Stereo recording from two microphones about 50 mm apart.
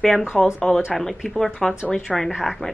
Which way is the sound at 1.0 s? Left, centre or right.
Centre.